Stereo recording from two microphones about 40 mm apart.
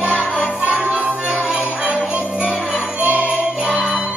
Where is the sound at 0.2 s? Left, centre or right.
Right.